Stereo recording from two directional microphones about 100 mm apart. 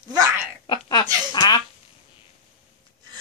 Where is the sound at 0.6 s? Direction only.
50° left (ahead or behind).